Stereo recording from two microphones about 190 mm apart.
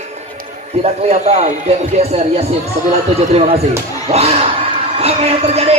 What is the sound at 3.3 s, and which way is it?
Speech, 30° right (ahead or behind).